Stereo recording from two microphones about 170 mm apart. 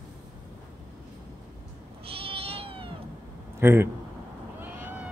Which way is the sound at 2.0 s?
35° right (ahead or behind).